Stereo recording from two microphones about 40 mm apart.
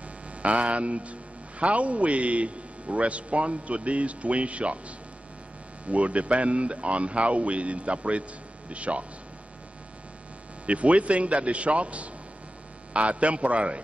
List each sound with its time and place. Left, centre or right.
0.4 s a man's voice: right
10.7 s a man's voice: right